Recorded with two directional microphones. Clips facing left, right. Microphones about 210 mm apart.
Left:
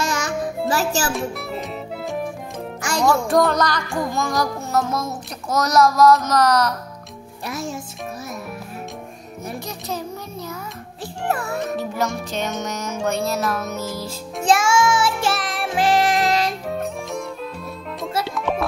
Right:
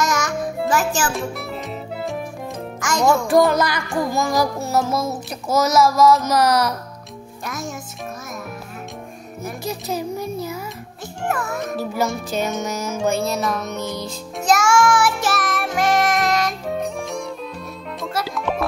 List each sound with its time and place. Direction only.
0.0 s music: 30° left (ahead or behind)
1.1 s music: centre (ahead or behind)
7.4 s a child's voice: 35° left (ahead or behind)
9.4 s music: 10° right (ahead or behind)
11.2 s a child's voice: 35° left (ahead or behind)
11.6 s music: 5° right (ahead or behind)
14.4 s music: 25° left (ahead or behind)
16.6 s music: centre (ahead or behind)